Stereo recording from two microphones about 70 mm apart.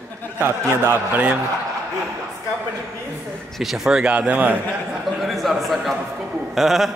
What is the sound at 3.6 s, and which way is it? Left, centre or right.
Speech, centre.